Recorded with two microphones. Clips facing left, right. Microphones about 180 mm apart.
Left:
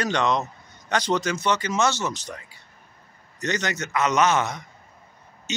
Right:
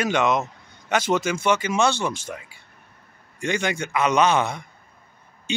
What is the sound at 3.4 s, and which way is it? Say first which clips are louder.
Speech: right 2 dB; 10° right (ahead or behind).